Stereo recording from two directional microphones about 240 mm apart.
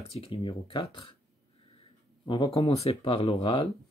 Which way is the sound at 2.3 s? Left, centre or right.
Left.